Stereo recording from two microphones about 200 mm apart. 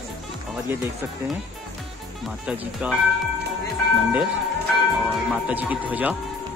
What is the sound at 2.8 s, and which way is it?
Speech, 5° right (ahead or behind).